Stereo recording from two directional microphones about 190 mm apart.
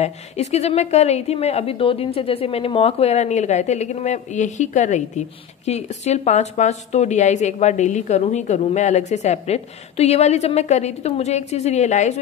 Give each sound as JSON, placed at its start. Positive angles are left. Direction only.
{"t": 0.0, "sound": "a woman's voice", "side_deg": 35}